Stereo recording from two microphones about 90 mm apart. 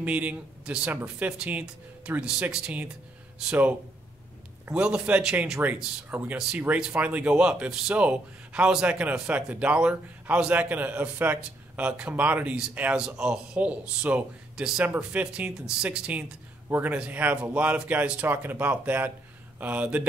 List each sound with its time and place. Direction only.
0.0 s speech: 15° right (ahead or behind)
4.7 s speech: 15° right (ahead or behind)